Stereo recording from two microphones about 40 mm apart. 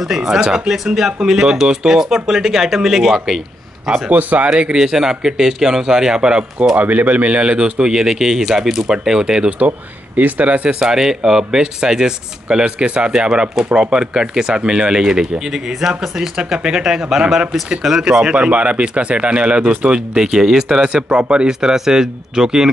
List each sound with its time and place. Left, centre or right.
0.0 s speech: centre
4.1 s speech: right
4.7 s speech: centre
6.8 s speech: right
10.1 s speech: right
10.8 s speech: centre
18.3 s speech: right
20.2 s speech: centre